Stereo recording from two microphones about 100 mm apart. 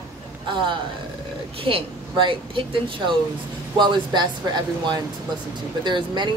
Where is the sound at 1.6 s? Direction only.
65° right (ahead or behind).